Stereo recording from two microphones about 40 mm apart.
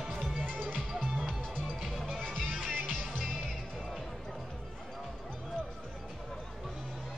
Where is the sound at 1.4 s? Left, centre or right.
Left.